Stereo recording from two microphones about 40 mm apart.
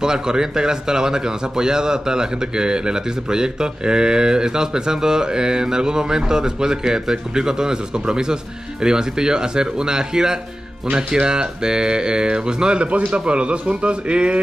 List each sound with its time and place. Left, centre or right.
0.0 s speech: centre